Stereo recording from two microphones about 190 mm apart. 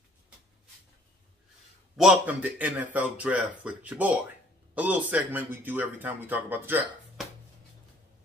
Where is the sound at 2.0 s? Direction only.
5° right (ahead or behind).